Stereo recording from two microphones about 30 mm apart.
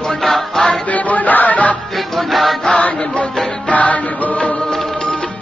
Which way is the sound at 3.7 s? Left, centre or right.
Left.